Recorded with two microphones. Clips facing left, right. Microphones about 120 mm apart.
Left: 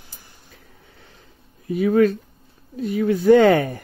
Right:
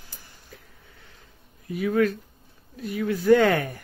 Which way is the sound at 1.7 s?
30° left (ahead or behind).